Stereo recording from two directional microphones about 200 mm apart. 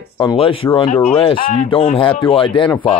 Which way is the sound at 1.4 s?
40° left (ahead or behind).